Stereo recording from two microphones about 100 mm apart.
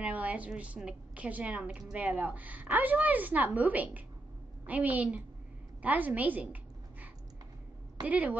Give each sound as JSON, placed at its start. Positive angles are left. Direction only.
{"t": 0.0, "sound": "a woman's voice", "side_deg": -15}
{"t": 5.8, "sound": "a sound", "side_deg": -15}
{"t": 8.0, "sound": "a woman's voice", "side_deg": -15}